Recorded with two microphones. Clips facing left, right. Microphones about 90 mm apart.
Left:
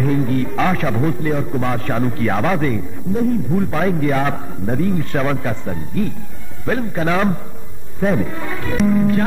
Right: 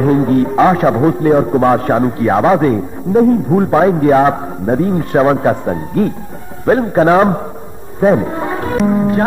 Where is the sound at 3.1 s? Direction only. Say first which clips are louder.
Right 8 dB; 50° right (ahead or behind).